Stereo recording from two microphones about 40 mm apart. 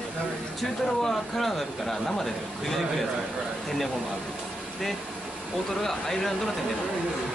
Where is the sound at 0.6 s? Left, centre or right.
Centre.